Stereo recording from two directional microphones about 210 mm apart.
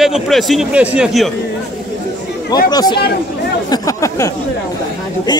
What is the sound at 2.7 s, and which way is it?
Speech, 20° left (ahead or behind).